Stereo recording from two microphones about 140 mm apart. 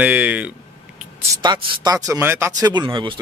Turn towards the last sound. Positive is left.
turn(degrees=-30)  # may be behind; listen again after turning